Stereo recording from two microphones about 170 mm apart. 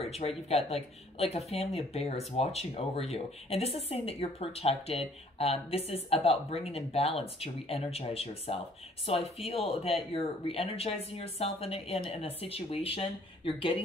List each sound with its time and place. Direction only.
0.0 s speech: 35° left (ahead or behind)